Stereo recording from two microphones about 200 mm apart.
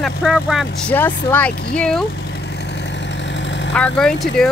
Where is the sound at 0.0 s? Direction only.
5° right (ahead or behind).